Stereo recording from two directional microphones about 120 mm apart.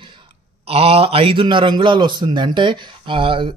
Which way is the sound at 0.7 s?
55° right (ahead or behind).